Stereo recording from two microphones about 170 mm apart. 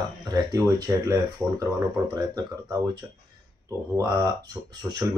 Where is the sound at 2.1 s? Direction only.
20° right (ahead or behind).